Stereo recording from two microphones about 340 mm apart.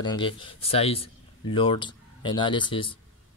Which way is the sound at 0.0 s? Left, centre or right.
Centre.